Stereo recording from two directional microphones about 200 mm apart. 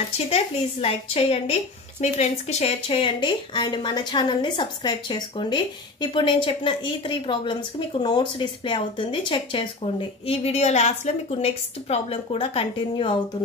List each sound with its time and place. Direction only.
0.3 s a woman's voice: 30° left (ahead or behind)